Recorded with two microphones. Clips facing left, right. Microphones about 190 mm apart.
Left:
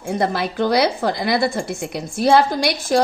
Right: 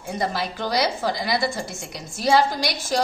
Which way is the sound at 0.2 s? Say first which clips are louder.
Left 6 dB; 60° left (ahead or behind).